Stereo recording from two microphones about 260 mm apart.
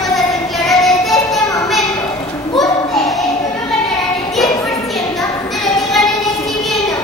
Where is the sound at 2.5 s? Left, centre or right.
Centre.